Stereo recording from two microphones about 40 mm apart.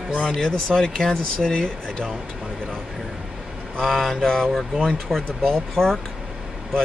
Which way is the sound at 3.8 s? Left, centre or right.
Centre.